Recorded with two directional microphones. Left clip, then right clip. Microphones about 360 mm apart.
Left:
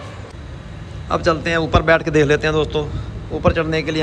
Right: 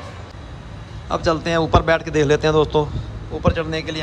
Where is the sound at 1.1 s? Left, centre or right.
Centre.